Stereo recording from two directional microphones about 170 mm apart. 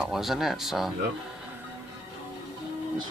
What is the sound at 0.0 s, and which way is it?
Speech, centre (ahead or behind).